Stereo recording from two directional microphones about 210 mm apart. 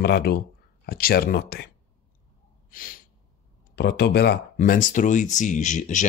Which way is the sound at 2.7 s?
40° left (ahead or behind).